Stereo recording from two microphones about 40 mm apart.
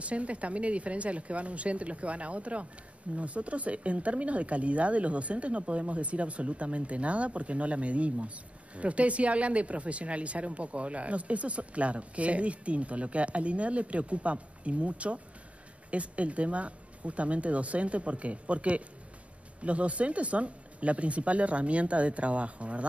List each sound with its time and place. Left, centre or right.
0.0 s speech: right